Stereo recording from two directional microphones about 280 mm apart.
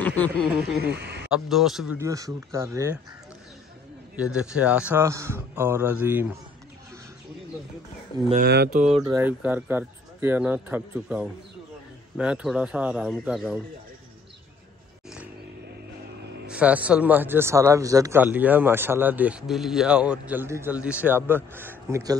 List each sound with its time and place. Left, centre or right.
0.8 s speech: right
1.3 s speech: centre
4.4 s speech: centre
8.3 s speech: right
9.0 s speech: centre
16.4 s speech: centre